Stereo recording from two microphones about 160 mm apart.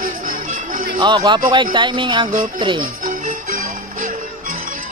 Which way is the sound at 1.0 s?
30° right (ahead or behind).